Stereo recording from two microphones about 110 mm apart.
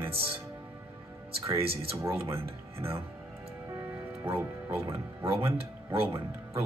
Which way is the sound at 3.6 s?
25° right (ahead or behind).